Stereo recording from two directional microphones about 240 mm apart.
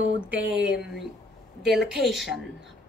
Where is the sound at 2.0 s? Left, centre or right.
Centre.